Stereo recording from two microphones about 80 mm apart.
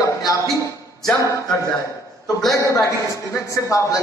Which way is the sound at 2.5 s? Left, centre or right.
Left.